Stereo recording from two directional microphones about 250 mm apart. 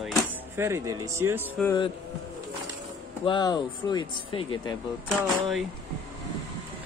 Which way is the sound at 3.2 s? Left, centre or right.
Centre.